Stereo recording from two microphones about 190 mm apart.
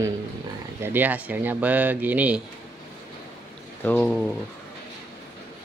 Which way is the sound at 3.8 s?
5° left (ahead or behind).